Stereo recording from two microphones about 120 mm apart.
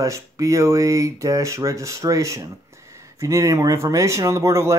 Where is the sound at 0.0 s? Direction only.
25° right (ahead or behind).